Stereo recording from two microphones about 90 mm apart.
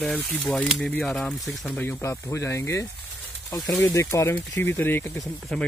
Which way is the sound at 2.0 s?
35° left (ahead or behind).